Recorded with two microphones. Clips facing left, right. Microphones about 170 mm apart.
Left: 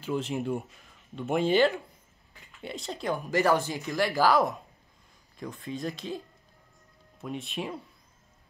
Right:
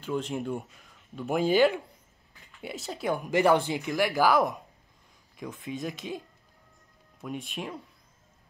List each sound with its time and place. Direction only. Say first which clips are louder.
0.0 s a man's voice: left 1 dB; 5° left (ahead or behind); by 4.0 s 15° right (ahead or behind)
4.1 s a man's voice: left 1 dB; centre (ahead or behind)
5.5 s speech: even; 15° right (ahead or behind)
7.2 s a man's voice: left 1 dB; centre (ahead or behind)